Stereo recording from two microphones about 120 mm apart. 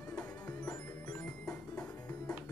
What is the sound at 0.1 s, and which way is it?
Music, 25° left (ahead or behind).